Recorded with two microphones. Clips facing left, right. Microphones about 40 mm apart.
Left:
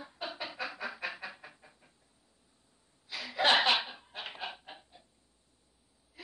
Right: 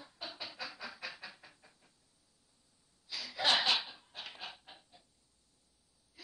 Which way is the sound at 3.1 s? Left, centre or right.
Left.